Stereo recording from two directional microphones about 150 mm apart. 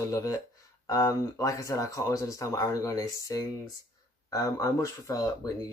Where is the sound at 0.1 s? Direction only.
25° left (ahead or behind).